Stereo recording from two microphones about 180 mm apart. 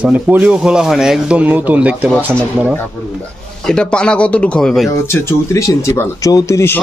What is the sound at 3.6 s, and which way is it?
Speech, 5° left (ahead or behind).